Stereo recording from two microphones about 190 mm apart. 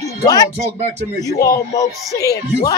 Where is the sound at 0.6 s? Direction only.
35° right (ahead or behind).